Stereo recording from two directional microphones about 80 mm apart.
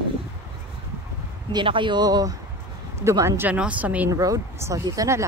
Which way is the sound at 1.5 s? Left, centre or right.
Right.